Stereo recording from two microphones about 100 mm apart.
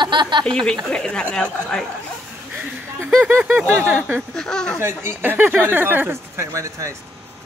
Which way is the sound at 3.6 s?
20° right (ahead or behind).